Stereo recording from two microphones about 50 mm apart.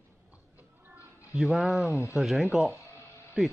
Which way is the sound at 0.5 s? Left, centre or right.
Right.